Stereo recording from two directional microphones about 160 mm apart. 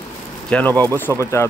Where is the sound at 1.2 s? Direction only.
20° left (ahead or behind).